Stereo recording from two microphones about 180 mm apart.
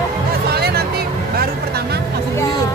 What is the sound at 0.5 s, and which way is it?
Hubbub, 60° right (ahead or behind).